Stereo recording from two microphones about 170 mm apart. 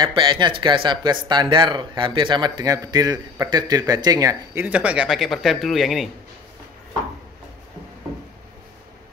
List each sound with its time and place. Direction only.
0.0 s speech: 25° right (ahead or behind)
4.6 s speech: 5° right (ahead or behind)